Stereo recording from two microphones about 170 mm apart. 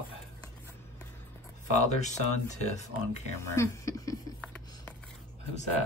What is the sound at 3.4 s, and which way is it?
Speech, 20° left (ahead or behind).